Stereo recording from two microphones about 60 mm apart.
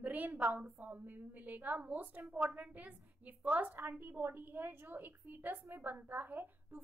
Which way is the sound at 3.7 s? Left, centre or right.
Right.